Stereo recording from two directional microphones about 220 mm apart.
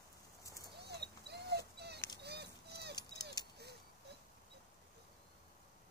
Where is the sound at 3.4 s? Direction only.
15° left (ahead or behind).